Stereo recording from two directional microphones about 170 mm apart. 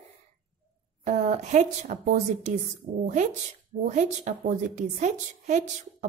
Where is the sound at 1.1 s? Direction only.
45° right (ahead or behind).